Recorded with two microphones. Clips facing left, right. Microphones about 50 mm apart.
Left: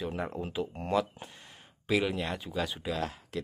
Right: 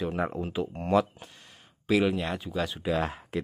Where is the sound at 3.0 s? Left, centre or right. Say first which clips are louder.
Right 5 dB; right.